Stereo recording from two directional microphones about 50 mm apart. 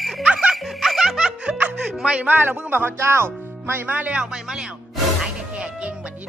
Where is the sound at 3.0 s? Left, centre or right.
Right.